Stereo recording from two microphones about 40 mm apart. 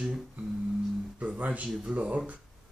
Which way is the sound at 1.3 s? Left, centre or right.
Right.